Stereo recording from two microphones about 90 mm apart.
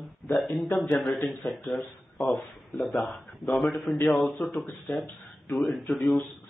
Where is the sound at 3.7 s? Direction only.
Centre (ahead or behind).